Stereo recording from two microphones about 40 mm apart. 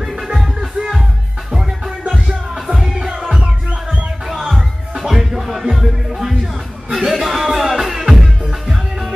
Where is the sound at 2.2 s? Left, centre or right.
Right.